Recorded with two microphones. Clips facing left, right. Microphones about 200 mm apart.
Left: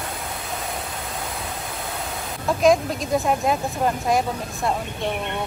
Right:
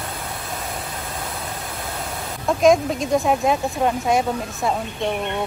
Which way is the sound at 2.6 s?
Centre (ahead or behind).